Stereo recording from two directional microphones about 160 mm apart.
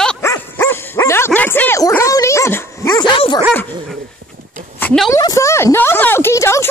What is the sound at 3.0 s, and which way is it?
Speech, 30° left (ahead or behind).